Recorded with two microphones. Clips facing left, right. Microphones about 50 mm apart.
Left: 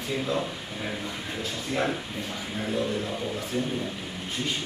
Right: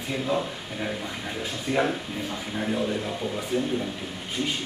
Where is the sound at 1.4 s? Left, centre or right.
Centre.